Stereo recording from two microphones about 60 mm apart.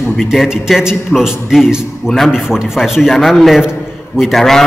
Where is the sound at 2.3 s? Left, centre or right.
Centre.